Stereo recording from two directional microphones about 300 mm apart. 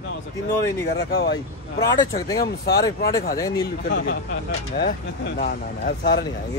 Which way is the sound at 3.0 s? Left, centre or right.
Left.